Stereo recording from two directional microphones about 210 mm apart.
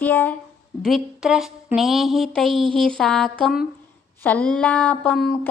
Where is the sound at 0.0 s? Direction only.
10° left (ahead or behind).